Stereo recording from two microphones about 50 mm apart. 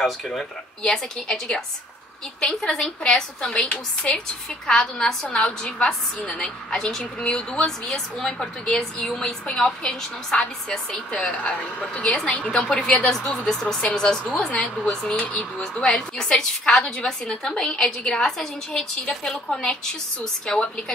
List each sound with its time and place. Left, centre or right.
0.0 s speech: centre
2.6 s speech: centre